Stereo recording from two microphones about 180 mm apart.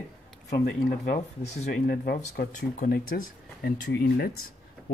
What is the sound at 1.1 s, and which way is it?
Speech, 40° left (ahead or behind).